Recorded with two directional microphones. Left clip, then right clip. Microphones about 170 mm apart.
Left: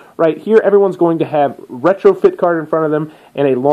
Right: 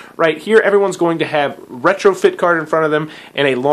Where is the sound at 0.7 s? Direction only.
35° left (ahead or behind).